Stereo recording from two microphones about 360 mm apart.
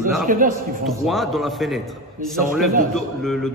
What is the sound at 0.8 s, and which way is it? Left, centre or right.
A man's voice, centre.